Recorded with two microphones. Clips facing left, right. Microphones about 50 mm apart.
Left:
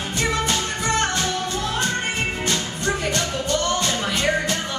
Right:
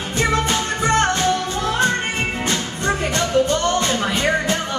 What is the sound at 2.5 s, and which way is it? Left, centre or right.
Music, centre.